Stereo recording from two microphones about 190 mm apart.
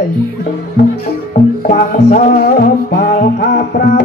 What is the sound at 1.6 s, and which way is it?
Music, 50° left (ahead or behind).